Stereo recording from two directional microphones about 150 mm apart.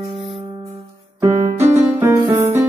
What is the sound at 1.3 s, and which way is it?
Music, 50° right (ahead or behind).